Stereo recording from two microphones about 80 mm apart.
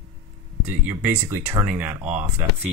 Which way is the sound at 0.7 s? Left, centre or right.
Right.